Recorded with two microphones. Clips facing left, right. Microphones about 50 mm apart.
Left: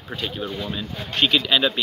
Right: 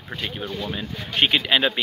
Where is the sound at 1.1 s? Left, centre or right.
Right.